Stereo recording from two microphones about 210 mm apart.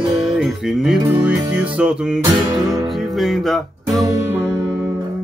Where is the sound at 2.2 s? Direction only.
15° right (ahead or behind).